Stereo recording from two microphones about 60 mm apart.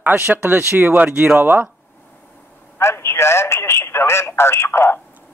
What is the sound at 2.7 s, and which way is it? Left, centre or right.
Speech, left.